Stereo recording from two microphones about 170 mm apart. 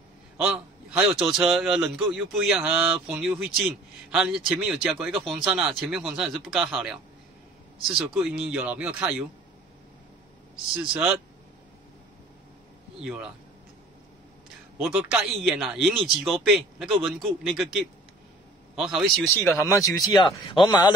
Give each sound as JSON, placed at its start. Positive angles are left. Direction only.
{"t": 0.4, "sound": "a man's voice", "side_deg": -5}
{"t": 10.8, "sound": "a man's voice", "side_deg": -5}
{"t": 13.0, "sound": "a man's voice", "side_deg": -5}
{"t": 14.8, "sound": "a man's voice", "side_deg": -5}
{"t": 19.2, "sound": "speech", "side_deg": 15}